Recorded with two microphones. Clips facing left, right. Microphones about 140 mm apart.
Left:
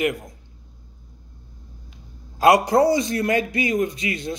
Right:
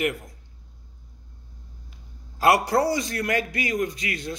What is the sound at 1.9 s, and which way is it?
A man's voice, 20° left (ahead or behind).